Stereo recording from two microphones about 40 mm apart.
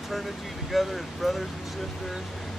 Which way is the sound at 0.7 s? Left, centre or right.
Centre.